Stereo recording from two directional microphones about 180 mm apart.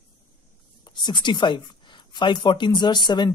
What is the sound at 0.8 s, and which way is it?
Speech, 25° left (ahead or behind).